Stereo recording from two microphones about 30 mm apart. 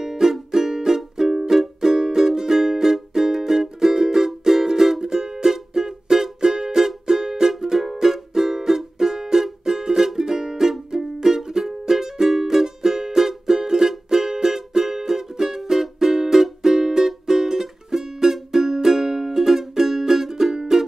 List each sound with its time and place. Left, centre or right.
0.0 s music: centre
20.5 s music: centre